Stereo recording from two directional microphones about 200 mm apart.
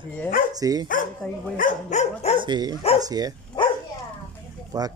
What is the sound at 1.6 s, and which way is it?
Dog, 40° left (ahead or behind).